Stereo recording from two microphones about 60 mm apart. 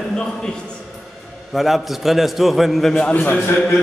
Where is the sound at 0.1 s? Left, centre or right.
Centre.